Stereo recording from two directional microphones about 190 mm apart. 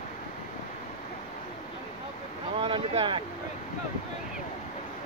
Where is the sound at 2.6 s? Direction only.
25° right (ahead or behind).